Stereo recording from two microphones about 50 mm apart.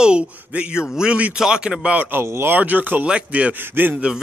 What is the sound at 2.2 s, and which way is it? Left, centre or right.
Speech, right.